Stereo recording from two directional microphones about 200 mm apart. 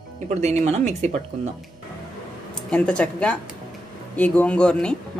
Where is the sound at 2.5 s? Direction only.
5° left (ahead or behind).